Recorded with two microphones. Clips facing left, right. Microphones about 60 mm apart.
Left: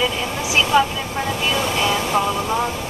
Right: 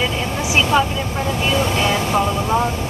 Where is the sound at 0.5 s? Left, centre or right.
Centre.